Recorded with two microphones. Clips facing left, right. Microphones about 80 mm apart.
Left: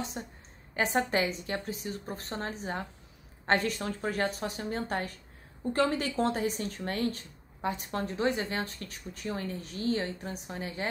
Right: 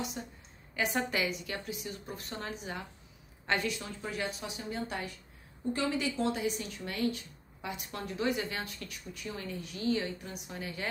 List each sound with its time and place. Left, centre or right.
0.2 s a woman's voice: left